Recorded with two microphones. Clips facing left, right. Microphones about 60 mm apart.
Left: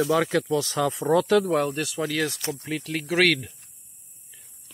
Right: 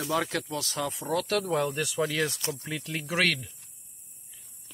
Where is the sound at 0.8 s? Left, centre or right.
Left.